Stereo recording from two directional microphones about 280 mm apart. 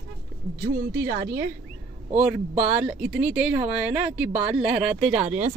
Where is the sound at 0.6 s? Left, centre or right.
Right.